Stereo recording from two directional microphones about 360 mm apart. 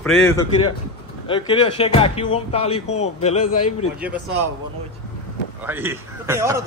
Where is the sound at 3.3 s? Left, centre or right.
Left.